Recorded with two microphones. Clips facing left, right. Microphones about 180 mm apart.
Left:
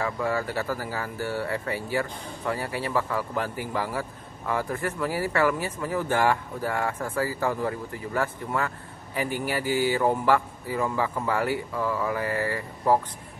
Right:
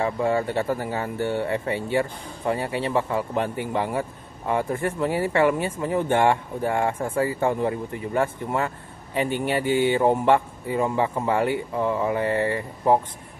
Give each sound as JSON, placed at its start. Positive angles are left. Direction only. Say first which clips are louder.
{"t": 0.0, "sound": "speech", "louder": "right 4 dB", "side_deg": -25}